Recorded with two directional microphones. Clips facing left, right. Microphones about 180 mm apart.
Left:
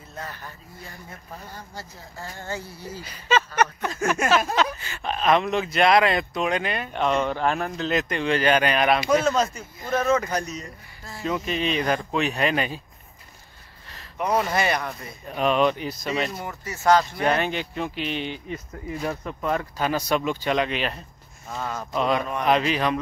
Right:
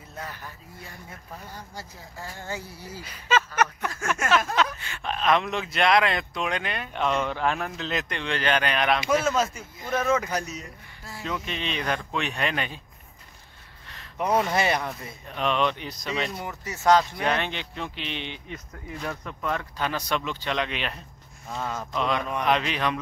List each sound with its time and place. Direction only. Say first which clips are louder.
0.1 s speech: left 1 dB; 10° right (ahead or behind)
3.1 s speech: left 2 dB; centre (ahead or behind)
3.8 s a sound: left 6 dB; 20° left (ahead or behind)
4.3 s speech: left 2 dB; centre (ahead or behind)
11.2 s speech: left 6 dB; 5° left (ahead or behind)
13.8 s gasp: even; 5° left (ahead or behind)
14.5 s speech: left 1 dB; 25° right (ahead or behind)
15.2 s speech: left 4 dB; 5° left (ahead or behind)
16.4 s speech: even; 20° right (ahead or behind)
17.3 s speech: left 4 dB; 5° left (ahead or behind)